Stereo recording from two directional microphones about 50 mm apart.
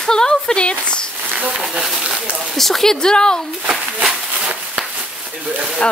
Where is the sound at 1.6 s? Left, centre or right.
Centre.